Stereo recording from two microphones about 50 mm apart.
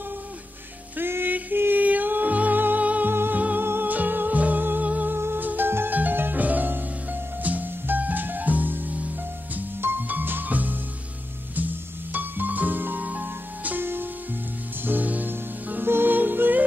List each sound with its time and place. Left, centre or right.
0.9 s music: right
3.1 s music: right
3.3 s music: right
3.6 s music: right
3.9 s music: right
5.1 s music: right
5.9 s music: right